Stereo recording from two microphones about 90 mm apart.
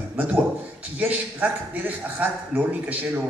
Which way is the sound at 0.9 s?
15° right (ahead or behind).